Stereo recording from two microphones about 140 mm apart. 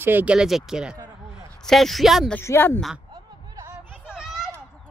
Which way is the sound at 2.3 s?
15° left (ahead or behind).